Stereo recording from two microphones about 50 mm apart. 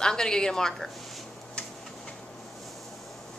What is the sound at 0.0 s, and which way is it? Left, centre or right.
Speech, centre.